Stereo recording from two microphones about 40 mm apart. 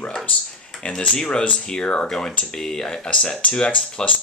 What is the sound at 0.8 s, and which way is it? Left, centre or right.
Speech, left.